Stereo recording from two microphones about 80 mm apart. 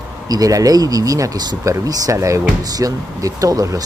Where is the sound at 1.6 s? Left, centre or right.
Right.